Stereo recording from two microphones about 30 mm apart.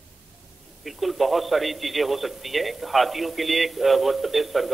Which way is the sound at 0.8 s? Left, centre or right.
Centre.